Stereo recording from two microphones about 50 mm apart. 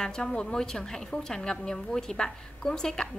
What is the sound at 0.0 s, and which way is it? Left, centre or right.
A woman's voice, centre.